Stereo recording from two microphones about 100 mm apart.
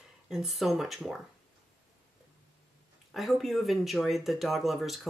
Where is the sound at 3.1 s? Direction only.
Centre (ahead or behind).